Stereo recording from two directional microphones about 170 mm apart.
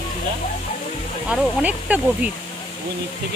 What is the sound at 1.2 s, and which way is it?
Speech, 5° right (ahead or behind).